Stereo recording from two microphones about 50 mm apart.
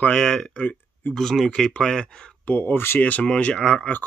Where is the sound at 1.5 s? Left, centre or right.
Centre.